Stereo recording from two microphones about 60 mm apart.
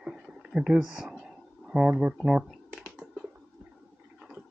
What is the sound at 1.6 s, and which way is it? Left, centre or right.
Speech, centre.